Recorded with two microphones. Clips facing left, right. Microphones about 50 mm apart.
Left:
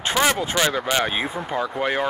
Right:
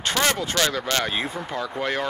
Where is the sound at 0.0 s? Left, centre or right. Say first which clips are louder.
Left 2 dB; centre.